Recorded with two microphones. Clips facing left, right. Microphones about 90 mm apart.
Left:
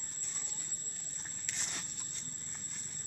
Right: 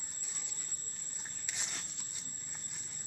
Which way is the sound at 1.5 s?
10° right (ahead or behind).